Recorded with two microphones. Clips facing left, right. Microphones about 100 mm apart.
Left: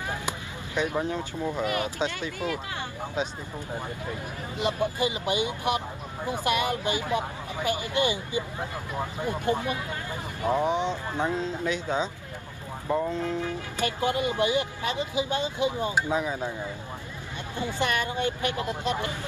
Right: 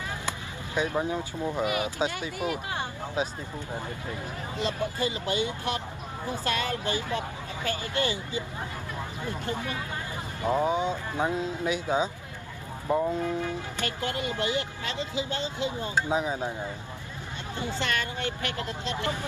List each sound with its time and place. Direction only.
0.9 s speech: 10° right (ahead or behind)
4.6 s speech: 15° left (ahead or behind)
10.5 s speech: 10° right (ahead or behind)
13.7 s speech: 15° left (ahead or behind)
16.1 s speech: 20° right (ahead or behind)
17.7 s speech: 15° left (ahead or behind)